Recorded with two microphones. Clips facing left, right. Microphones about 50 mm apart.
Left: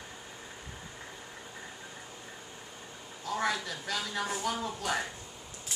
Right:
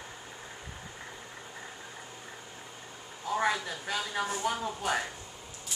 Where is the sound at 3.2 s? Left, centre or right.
Centre.